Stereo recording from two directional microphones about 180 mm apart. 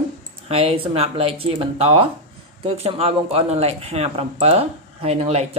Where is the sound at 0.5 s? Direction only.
35° right (ahead or behind).